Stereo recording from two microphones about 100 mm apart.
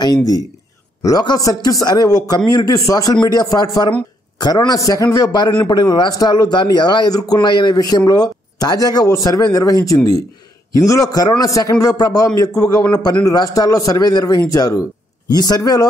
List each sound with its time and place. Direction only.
0.0 s a man's voice: 40° left (ahead or behind)